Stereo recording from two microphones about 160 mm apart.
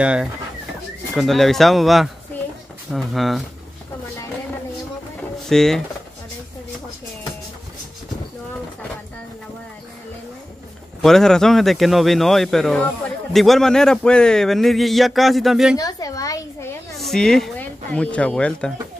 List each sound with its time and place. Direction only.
0.0 s speech: 5° right (ahead or behind)
5.5 s speech: centre (ahead or behind)
11.0 s speech: 5° left (ahead or behind)
15.8 s a sound: 20° left (ahead or behind)
16.9 s speech: centre (ahead or behind)